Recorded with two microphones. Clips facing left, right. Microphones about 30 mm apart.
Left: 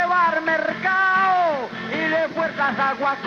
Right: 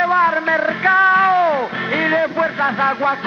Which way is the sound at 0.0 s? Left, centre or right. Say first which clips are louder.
Right 3 dB; centre.